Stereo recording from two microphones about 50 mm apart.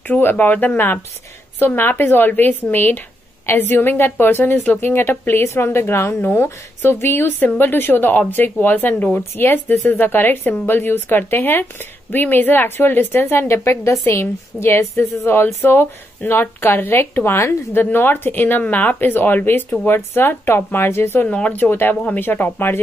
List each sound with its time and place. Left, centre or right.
0.1 s a woman's voice: left
21.3 s speech: left
21.5 s a woman's voice: left